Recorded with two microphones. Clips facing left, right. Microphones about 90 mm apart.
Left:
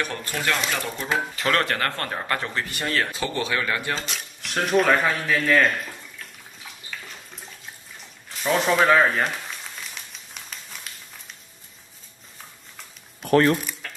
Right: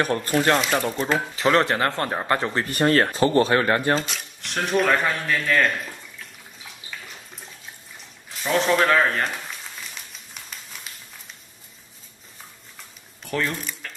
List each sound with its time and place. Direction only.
0.0 s speech: 40° right (ahead or behind)
0.6 s speech: 5° right (ahead or behind)
1.6 s speech: 20° right (ahead or behind); by 4.0 s 40° right (ahead or behind)
4.1 s speech: centre (ahead or behind)
6.1 s bathtub: 5° right (ahead or behind)
8.3 s crumpling: centre (ahead or behind)
13.2 s speech: 55° left (ahead or behind)
13.8 s music: centre (ahead or behind)